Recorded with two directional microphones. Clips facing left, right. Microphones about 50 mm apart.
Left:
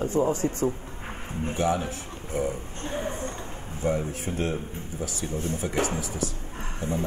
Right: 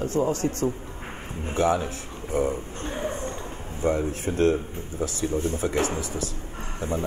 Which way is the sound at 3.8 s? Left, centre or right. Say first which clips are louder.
Right 2 dB; right.